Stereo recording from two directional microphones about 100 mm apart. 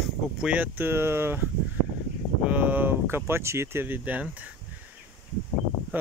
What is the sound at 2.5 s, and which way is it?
Speech, 15° right (ahead or behind).